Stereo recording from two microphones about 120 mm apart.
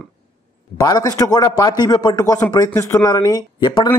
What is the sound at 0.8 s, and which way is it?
A man's voice, 30° left (ahead or behind).